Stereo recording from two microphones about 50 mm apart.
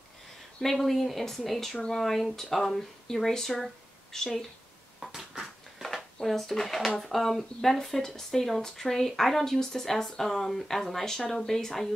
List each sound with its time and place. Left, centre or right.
0.6 s speech: centre
5.0 s a sound: centre
6.2 s speech: centre